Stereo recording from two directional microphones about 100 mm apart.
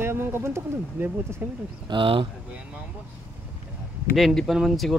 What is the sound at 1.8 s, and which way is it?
Speech, 55° right (ahead or behind).